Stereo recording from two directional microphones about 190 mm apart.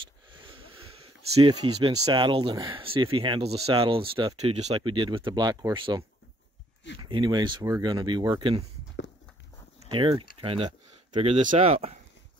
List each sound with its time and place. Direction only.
0.3 s a sound: 25° right (ahead or behind)
1.3 s speech: 25° right (ahead or behind)
9.8 s speech: 25° right (ahead or behind)